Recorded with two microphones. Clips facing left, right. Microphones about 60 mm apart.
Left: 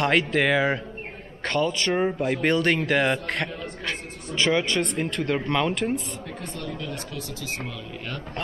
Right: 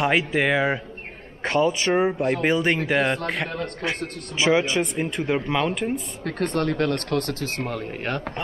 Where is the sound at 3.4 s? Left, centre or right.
Right.